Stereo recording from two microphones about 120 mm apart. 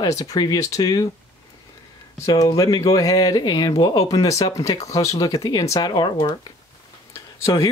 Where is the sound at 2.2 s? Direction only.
30° left (ahead or behind).